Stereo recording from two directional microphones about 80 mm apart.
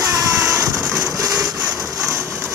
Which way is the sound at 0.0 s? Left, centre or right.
Right.